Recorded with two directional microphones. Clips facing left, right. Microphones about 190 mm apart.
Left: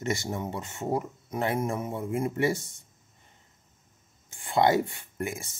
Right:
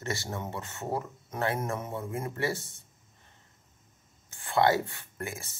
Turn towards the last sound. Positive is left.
turn(degrees=15)  # may be behind; listen again after turning